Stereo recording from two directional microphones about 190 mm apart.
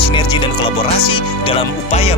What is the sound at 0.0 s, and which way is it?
Speech, 25° left (ahead or behind).